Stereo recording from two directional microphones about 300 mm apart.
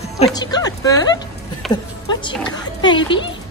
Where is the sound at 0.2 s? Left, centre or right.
Centre.